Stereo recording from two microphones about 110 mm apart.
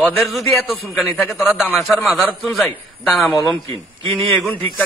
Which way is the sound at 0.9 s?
15° left (ahead or behind).